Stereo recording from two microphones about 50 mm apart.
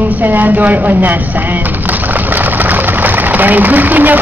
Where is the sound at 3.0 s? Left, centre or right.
Right.